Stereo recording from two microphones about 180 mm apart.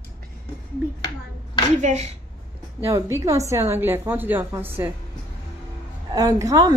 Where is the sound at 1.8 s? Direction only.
40° right (ahead or behind).